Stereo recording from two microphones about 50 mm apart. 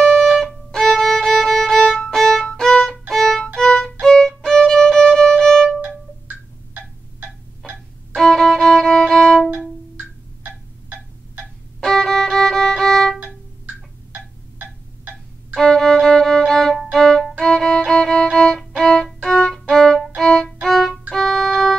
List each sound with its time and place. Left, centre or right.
0.0 s music: centre
0.4 s violin: centre
5.8 s music: right
8.2 s violin: centre
11.8 s violin: centre
15.6 s violin: centre
21.1 s music: centre